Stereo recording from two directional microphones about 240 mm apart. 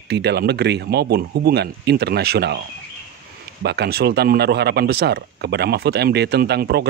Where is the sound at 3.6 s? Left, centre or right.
Right.